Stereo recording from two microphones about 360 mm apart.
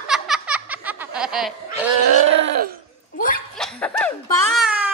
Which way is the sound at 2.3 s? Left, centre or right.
Right.